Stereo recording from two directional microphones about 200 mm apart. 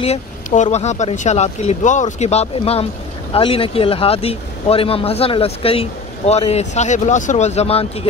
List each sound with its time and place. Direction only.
0.0 s speech: 35° left (ahead or behind)